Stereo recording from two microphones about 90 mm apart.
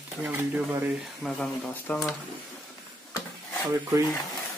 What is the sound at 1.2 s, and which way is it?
Speech, centre (ahead or behind).